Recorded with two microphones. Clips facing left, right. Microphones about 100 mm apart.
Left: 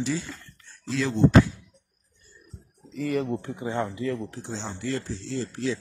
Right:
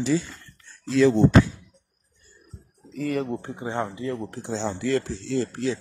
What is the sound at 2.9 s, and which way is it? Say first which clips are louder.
Speech: even; 45° right (ahead or behind).